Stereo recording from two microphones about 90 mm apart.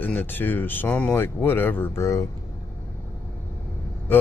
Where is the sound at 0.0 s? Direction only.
20° left (ahead or behind).